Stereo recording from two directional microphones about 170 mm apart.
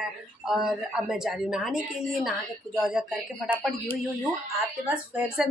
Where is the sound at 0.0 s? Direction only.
Centre (ahead or behind).